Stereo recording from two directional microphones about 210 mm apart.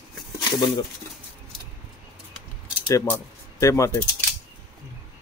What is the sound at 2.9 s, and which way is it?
Speech, 15° left (ahead or behind).